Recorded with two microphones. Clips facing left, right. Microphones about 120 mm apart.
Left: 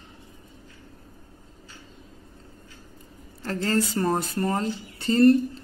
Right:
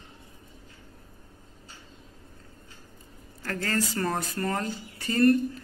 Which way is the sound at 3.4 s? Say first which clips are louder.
Left 4 dB; 25° left (ahead or behind).